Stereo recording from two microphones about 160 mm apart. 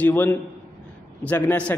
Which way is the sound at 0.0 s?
10° left (ahead or behind).